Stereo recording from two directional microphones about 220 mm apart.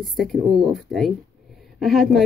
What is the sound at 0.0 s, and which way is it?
Speech, centre (ahead or behind).